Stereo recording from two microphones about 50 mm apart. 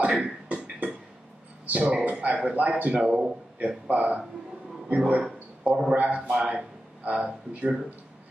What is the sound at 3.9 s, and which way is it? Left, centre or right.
A man's voice, right.